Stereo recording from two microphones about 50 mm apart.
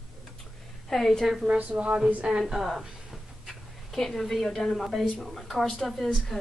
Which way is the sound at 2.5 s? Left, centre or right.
Centre.